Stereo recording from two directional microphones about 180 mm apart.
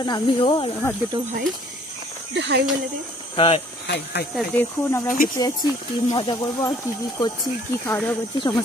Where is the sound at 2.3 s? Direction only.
70° right (ahead or behind).